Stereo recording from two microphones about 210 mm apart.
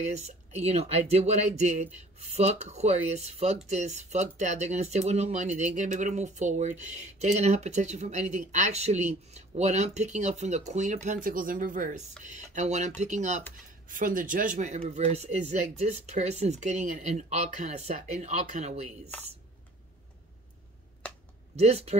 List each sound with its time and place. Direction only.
0.0 s speech: 30° right (ahead or behind)
21.0 s a sound: 5° left (ahead or behind)
21.5 s speech: 30° right (ahead or behind)